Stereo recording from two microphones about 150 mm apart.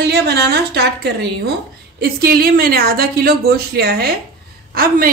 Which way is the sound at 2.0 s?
85° right.